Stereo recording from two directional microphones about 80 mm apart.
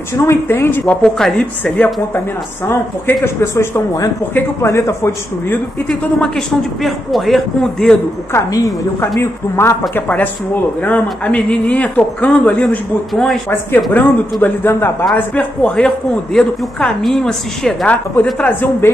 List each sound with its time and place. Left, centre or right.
0.2 s speech: left
1.0 s a man's voice: centre
2.1 s speech: left
4.6 s speech: left
5.9 s speech: centre
8.3 s a woman's voice: left
9.2 s speech: left
12.6 s speech: centre
14.0 s speech: centre
15.1 s a man's voice: centre
18.4 s speech: left